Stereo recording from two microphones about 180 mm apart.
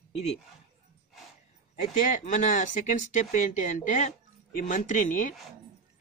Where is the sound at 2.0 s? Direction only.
45° left (ahead or behind).